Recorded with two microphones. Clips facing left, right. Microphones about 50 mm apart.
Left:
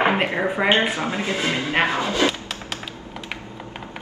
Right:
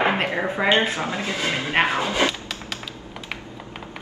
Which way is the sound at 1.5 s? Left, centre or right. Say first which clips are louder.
Right 2 dB; right.